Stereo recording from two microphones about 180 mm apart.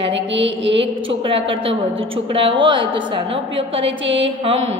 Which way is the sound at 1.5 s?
30° right (ahead or behind).